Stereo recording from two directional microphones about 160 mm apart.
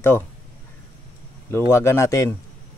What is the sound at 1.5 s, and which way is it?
Speech, 15° left (ahead or behind).